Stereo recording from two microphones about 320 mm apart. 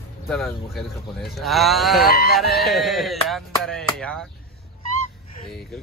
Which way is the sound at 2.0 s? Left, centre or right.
Left.